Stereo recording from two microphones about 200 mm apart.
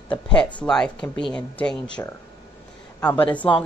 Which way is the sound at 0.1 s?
5° left (ahead or behind).